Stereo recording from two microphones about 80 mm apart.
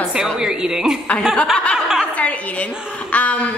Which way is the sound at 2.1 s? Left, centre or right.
Centre.